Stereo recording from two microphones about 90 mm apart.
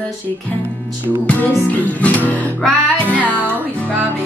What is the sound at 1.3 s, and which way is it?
Music, 15° left (ahead or behind).